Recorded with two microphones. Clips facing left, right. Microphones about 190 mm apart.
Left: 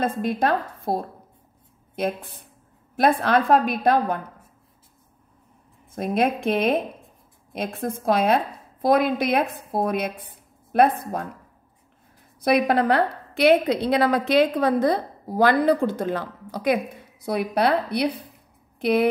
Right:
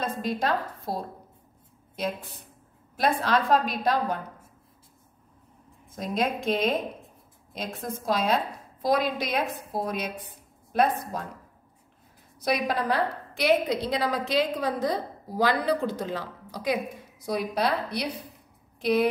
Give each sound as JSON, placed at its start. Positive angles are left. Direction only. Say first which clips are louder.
{"t": 0.0, "sound": "a woman's voice", "louder": "left 5 dB", "side_deg": 55}
{"t": 5.9, "sound": "a woman's voice", "louder": "left 5 dB", "side_deg": 60}
{"t": 12.4, "sound": "a woman's voice", "louder": "left 7 dB", "side_deg": 60}